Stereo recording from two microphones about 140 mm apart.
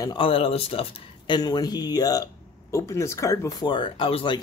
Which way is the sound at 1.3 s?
30° left (ahead or behind).